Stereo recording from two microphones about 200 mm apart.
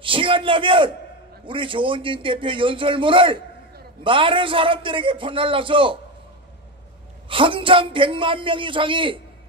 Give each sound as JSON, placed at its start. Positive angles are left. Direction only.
{"t": 0.0, "sound": "a man's voice", "side_deg": -25}
{"t": 7.2, "sound": "a man's voice", "side_deg": -25}